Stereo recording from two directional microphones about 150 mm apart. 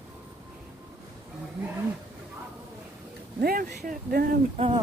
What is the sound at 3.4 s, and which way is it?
Speech, 75° right (ahead or behind).